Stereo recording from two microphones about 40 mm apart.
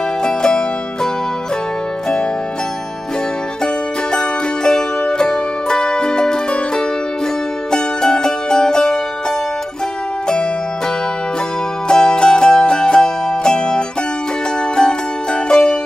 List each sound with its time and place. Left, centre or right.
0.2 s music: centre
3.6 s music: centre
7.7 s music: centre
11.9 s music: centre